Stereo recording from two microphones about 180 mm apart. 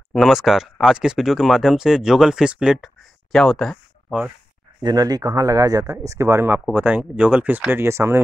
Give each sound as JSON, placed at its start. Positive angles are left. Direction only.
{"t": 0.1, "sound": "speech", "side_deg": 0}
{"t": 4.8, "sound": "speech", "side_deg": -20}